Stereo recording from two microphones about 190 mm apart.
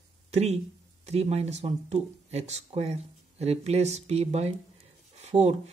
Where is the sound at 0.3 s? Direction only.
35° right (ahead or behind).